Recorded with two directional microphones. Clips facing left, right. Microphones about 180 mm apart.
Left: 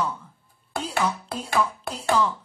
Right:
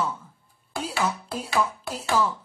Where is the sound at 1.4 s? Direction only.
55° left (ahead or behind).